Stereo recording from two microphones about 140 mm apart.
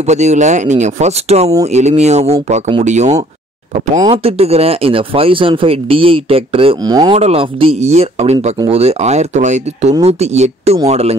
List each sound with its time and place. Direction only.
0.0 s speech: 55° right (ahead or behind)
4.1 s speech: 45° right (ahead or behind)
6.9 s speech: 30° right (ahead or behind)
7.2 s speech: 45° right (ahead or behind)